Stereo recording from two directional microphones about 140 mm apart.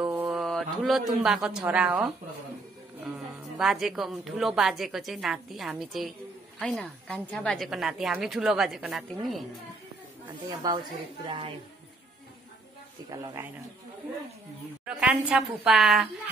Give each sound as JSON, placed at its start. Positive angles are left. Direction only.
{"t": 0.0, "sound": "mantra", "side_deg": -10}
{"t": 0.4, "sound": "a man's voice", "side_deg": 0}
{"t": 3.5, "sound": "a woman's voice", "side_deg": 0}
{"t": 10.6, "sound": "a woman's voice", "side_deg": -30}
{"t": 13.1, "sound": "a woman's voice", "side_deg": -25}
{"t": 14.9, "sound": "a woman's voice", "side_deg": -5}